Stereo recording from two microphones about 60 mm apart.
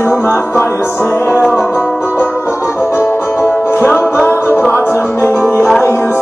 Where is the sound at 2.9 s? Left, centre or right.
Left.